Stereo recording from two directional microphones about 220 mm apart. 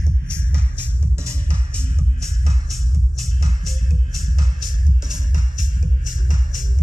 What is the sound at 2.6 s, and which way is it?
Music, centre (ahead or behind).